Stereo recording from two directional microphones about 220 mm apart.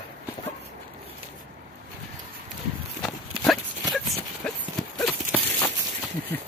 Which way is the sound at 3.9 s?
Centre (ahead or behind).